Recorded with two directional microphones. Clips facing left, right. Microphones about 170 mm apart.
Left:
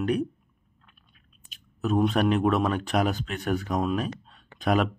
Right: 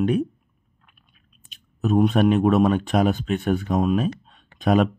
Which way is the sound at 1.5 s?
20° right (ahead or behind).